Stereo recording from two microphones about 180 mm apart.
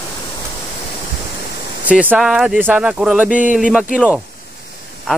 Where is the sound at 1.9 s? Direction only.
10° right (ahead or behind).